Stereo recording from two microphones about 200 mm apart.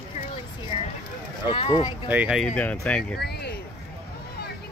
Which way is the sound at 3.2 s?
55° left (ahead or behind).